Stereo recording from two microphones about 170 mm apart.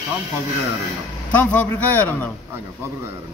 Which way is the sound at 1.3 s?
10° left (ahead or behind).